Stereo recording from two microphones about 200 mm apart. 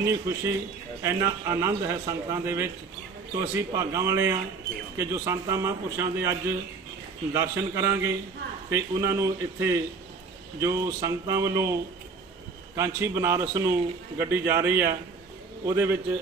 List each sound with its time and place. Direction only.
0.0 s a man's voice: 15° right (ahead or behind)
7.3 s a man's voice: 15° right (ahead or behind)
12.7 s a man's voice: 15° right (ahead or behind)